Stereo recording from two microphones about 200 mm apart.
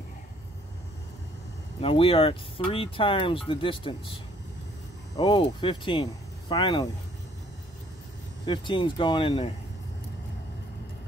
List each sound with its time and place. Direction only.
1.8 s speech: 30° left (ahead or behind)
5.1 s speech: 25° left (ahead or behind)
8.5 s speech: 25° left (ahead or behind)